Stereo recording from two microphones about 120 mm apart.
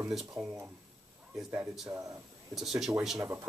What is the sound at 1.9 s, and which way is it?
Speech, 25° right (ahead or behind).